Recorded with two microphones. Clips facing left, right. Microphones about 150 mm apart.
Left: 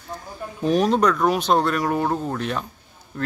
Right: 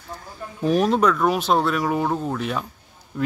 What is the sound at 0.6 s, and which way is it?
Speech, 5° right (ahead or behind).